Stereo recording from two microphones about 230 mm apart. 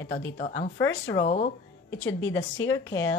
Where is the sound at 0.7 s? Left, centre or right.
Centre.